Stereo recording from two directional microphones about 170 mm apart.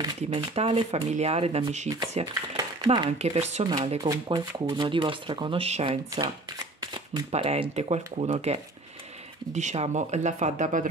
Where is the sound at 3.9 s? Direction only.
25° right (ahead or behind).